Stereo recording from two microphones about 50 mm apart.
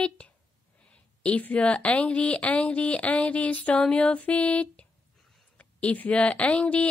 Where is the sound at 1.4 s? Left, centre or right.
Left.